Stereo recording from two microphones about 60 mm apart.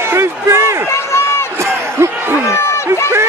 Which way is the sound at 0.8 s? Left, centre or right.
Left.